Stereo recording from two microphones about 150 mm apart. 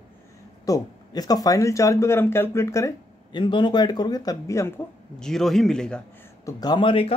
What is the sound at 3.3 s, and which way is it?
A woman's voice, 30° left (ahead or behind).